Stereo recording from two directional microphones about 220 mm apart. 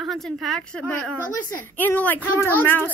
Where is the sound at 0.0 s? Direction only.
Centre (ahead or behind).